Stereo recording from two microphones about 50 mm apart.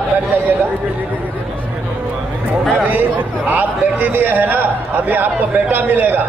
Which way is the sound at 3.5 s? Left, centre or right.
Right.